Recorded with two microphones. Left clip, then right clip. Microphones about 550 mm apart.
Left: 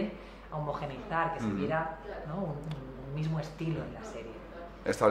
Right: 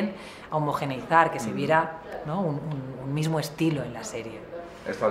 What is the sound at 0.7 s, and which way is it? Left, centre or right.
Speech, right.